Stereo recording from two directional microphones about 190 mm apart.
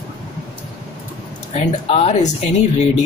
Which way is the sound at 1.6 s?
35° left (ahead or behind).